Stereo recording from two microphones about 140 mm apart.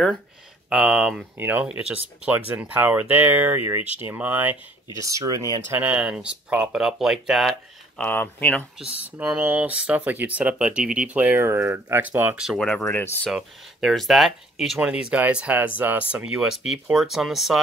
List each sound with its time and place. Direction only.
0.7 s speech: 5° right (ahead or behind)
4.9 s speech: 25° right (ahead or behind)
5.8 s speech: 10° right (ahead or behind)
8.0 s speech: 15° left (ahead or behind)
8.7 s speech: 10° right (ahead or behind)
12.4 s speech: centre (ahead or behind)
12.6 s speech: 10° left (ahead or behind)
13.3 s speech: centre (ahead or behind)